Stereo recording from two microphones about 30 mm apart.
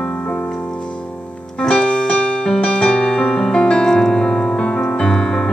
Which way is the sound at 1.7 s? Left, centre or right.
Left.